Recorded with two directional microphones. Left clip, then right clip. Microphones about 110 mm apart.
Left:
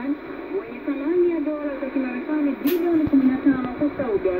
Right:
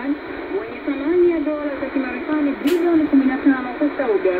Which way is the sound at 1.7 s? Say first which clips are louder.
Right 3 dB; 25° right (ahead or behind).